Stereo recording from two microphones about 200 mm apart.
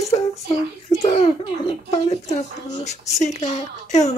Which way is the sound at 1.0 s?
30° left (ahead or behind).